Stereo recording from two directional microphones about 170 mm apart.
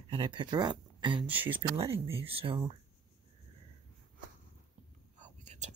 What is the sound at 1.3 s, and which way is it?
Speech, 10° right (ahead or behind).